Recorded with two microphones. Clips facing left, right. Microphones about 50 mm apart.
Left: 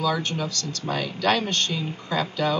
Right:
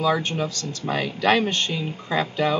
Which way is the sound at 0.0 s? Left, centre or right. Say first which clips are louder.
Right 3 dB; right.